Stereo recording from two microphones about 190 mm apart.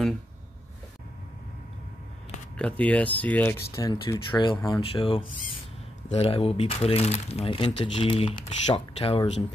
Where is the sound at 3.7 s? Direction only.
20° left (ahead or behind).